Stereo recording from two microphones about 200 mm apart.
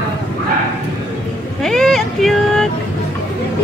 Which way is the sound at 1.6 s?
Centre (ahead or behind).